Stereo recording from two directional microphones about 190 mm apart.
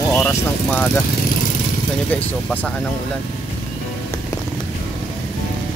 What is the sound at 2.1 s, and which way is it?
Speech, 5° left (ahead or behind).